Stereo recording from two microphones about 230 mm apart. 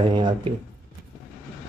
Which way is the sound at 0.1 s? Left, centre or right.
Centre.